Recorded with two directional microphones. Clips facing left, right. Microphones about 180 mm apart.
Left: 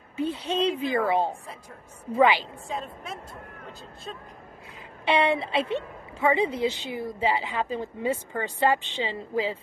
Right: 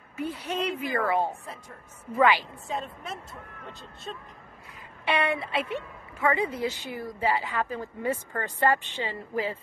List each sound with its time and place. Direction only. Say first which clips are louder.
0.2 s a woman's voice: left 4 dB; 25° left (ahead or behind)
2.7 s speech: right 1 dB; centre (ahead or behind)
5.0 s a woman's voice: left 4 dB; 25° left (ahead or behind)
8.9 s a woman's voice: left 3 dB; 25° left (ahead or behind)